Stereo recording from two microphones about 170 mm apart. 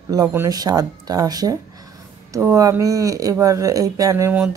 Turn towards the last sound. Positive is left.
turn(degrees=-15)  # may be behind; listen again after turning